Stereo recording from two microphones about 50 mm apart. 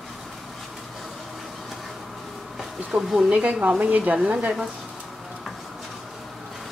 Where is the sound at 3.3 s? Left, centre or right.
Right.